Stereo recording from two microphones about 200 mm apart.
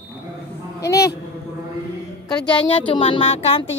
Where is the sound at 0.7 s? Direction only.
15° left (ahead or behind).